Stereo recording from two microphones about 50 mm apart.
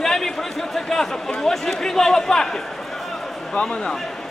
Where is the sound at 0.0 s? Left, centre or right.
Centre.